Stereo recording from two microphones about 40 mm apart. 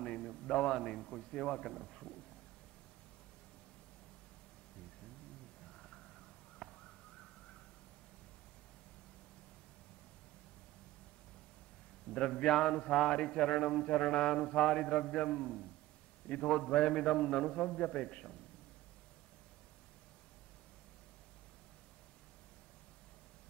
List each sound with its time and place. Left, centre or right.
0.3 s a man's voice: centre
5.7 s a sound: centre
12.1 s a man's voice: left